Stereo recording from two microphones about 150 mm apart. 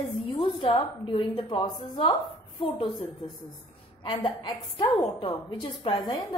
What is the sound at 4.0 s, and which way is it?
A woman's voice, 30° left (ahead or behind).